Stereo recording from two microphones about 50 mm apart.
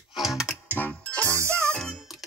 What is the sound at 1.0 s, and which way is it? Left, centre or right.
Music, left.